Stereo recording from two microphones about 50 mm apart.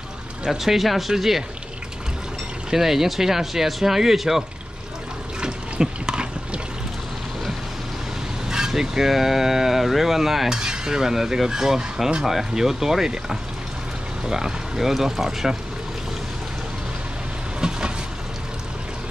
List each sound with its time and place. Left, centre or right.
0.5 s speech: centre
2.7 s speech: centre
5.4 s water: centre
8.5 s speech: centre
10.5 s speech: centre
17.6 s train: centre